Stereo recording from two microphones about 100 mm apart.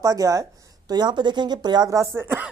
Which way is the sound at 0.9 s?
45° right (ahead or behind).